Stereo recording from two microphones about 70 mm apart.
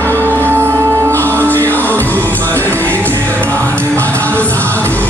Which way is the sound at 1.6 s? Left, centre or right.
Left.